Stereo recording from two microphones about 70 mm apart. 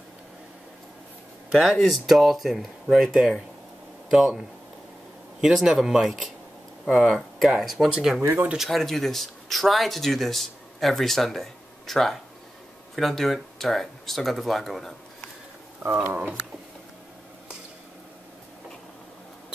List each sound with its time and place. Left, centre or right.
1.5 s speech: centre
8.2 s speech: right
8.5 s speech: centre
15.8 s speech: right